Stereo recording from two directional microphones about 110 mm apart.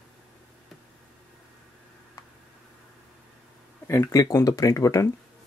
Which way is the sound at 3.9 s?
30° left (ahead or behind).